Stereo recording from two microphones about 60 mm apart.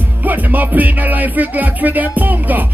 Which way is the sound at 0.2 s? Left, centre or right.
Right.